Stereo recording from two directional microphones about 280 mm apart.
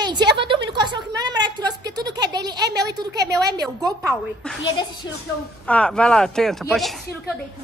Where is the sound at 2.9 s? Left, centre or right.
Centre.